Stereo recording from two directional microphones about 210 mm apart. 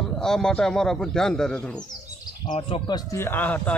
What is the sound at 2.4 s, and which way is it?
Speech, 30° left (ahead or behind).